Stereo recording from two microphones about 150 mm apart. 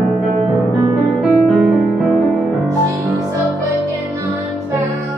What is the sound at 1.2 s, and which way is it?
Music, centre (ahead or behind).